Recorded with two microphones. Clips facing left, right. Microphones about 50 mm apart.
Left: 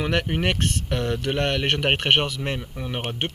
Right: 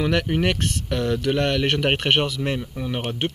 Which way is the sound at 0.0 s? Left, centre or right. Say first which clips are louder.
Right 2 dB; centre.